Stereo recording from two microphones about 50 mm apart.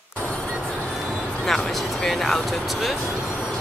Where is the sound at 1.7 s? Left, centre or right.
Centre.